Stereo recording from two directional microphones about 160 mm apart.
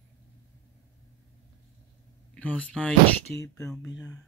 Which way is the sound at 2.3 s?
10° left (ahead or behind).